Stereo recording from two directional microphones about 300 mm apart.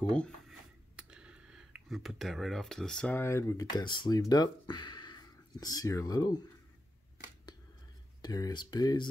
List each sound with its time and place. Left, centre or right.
0.1 s speech: centre
8.2 s speech: centre